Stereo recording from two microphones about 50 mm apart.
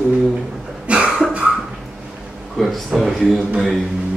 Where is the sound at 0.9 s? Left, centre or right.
Right.